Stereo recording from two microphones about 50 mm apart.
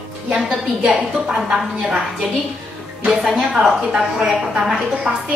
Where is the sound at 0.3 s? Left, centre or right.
Centre.